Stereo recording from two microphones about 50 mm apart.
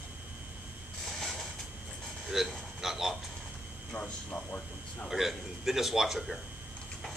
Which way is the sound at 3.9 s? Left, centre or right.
Left.